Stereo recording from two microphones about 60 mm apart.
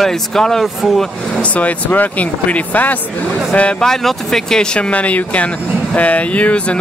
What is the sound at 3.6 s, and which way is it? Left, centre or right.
Speech, centre.